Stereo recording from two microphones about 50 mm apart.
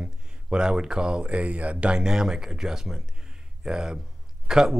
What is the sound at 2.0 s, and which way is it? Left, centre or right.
Speech, centre.